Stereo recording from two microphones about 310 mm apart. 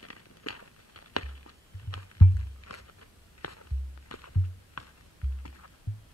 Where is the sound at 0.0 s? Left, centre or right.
Left.